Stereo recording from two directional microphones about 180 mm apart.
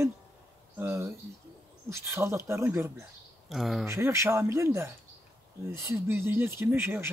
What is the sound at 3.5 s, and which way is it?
Speech, centre (ahead or behind).